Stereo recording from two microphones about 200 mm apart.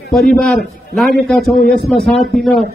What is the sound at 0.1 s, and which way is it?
A man's voice, centre (ahead or behind).